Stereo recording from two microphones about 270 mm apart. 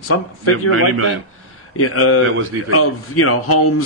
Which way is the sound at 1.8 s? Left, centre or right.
Left.